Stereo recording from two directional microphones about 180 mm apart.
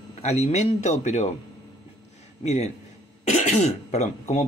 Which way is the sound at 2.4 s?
35° left (ahead or behind).